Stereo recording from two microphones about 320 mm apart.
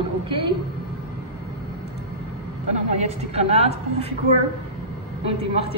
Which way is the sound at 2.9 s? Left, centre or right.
Right.